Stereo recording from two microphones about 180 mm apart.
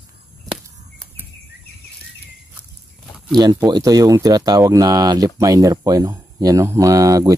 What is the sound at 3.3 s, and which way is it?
Speech, 25° right (ahead or behind).